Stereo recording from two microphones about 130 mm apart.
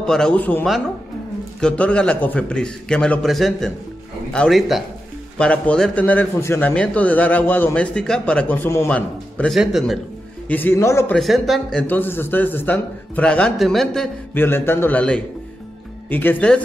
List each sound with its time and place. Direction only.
0.0 s a man's voice: 5° left (ahead or behind)
9.6 s speech: centre (ahead or behind)
10.5 s a man's voice: 15° left (ahead or behind)
11.1 s speech: centre (ahead or behind)
11.9 s a man's voice: 15° left (ahead or behind)
14.3 s a man's voice: 15° left (ahead or behind)